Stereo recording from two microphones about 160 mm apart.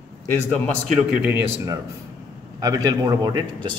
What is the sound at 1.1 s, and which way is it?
A man's voice, 15° right (ahead or behind).